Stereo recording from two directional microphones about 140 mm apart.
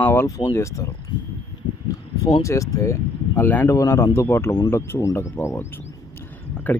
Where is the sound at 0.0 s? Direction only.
15° left (ahead or behind).